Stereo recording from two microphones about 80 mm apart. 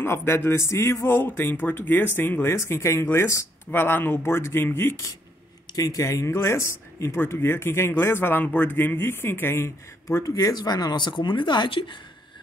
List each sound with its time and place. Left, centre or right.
0.0 s speech: left
3.7 s speech: left
5.8 s speech: left